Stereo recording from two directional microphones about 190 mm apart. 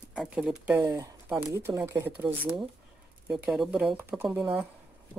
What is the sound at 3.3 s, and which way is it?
Speech, 5° right (ahead or behind).